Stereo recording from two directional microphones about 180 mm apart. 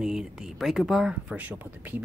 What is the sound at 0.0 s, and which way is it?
Speech, 5° right (ahead or behind).